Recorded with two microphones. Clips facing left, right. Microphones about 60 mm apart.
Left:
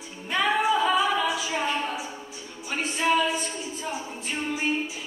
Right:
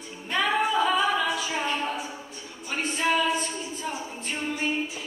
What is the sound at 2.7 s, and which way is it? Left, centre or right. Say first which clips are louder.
A capella: left 1 dB; centre.